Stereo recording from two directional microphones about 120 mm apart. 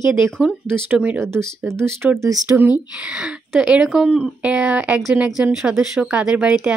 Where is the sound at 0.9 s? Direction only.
15° right (ahead or behind).